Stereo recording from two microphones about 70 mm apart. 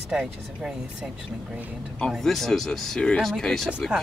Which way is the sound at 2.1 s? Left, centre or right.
Centre.